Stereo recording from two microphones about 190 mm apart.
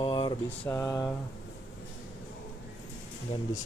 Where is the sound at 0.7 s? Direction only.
15° left (ahead or behind).